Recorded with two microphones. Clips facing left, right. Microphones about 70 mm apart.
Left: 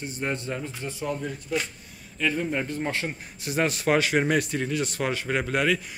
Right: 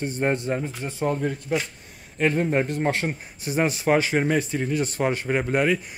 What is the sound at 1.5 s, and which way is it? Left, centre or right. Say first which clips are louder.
Speech: right 2 dB; right.